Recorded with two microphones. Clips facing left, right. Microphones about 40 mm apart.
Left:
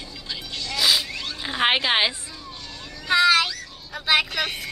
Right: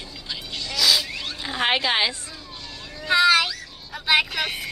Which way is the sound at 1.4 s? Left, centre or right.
Centre.